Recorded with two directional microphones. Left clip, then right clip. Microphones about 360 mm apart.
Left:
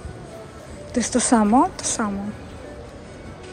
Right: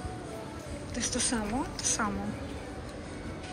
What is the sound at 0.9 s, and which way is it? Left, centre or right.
Speech, centre.